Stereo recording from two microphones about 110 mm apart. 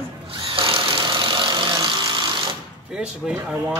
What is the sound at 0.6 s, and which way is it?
Vehicle, 55° right (ahead or behind).